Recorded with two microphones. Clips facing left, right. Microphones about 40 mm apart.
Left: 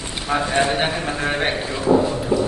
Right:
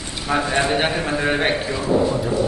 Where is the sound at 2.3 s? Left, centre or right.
Left.